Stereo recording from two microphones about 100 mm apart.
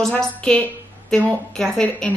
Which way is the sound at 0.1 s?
15° left (ahead or behind).